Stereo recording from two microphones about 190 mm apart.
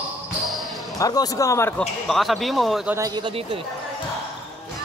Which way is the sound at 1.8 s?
Centre (ahead or behind).